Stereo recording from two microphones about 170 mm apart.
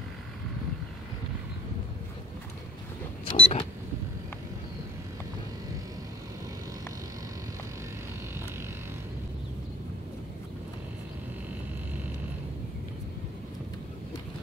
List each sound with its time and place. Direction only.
3.3 s vehicle: 30° left (ahead or behind)